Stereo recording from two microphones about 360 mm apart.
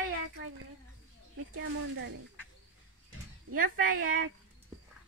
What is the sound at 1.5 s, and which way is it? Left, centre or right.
Speech, right.